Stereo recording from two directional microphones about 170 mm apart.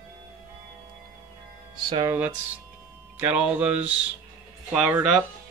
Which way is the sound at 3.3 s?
10° right (ahead or behind).